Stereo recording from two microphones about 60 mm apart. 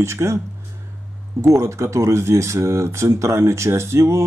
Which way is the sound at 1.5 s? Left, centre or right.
Right.